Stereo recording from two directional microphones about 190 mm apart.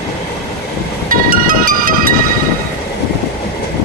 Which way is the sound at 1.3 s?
45° right (ahead or behind).